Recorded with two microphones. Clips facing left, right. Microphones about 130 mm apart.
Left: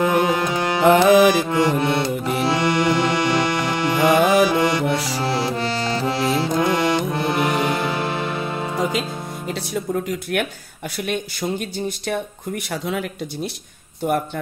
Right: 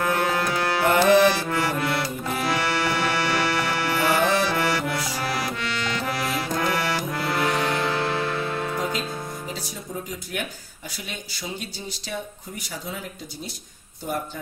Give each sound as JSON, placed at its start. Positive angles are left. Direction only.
{"t": 0.0, "sound": "music", "side_deg": 15}
{"t": 5.1, "sound": "accordion", "side_deg": 30}
{"t": 10.3, "sound": "speech", "side_deg": 65}